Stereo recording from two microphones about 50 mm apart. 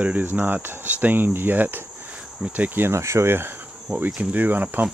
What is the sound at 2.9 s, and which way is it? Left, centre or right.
Speech, right.